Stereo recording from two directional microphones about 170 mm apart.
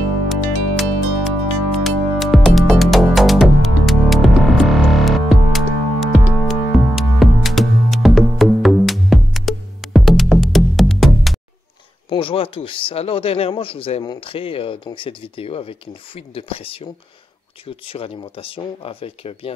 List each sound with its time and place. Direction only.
0.3 s music: centre (ahead or behind)
12.1 s speech: 30° left (ahead or behind)